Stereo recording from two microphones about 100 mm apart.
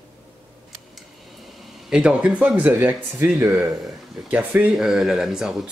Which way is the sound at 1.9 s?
10° right (ahead or behind).